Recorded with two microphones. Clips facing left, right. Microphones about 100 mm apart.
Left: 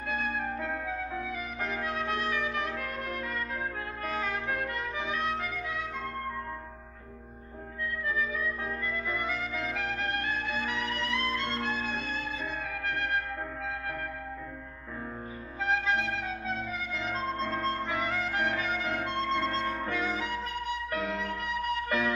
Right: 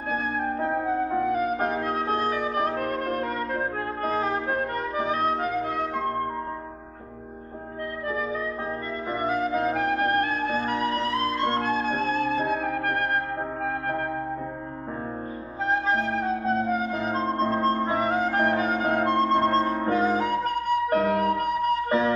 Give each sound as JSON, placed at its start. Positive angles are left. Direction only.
{"t": 0.1, "sound": "music", "side_deg": -35}
{"t": 9.1, "sound": "music", "side_deg": -40}
{"t": 15.6, "sound": "flute", "side_deg": -40}